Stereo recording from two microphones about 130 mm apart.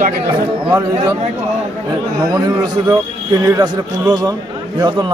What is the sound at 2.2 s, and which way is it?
A man's voice, 30° right (ahead or behind).